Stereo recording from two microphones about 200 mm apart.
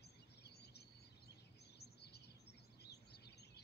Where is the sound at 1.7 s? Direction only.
55° left (ahead or behind).